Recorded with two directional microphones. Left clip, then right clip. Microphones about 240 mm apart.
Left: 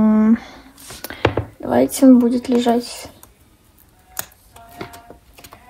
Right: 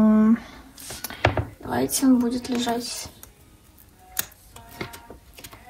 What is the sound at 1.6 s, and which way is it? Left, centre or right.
Speech, left.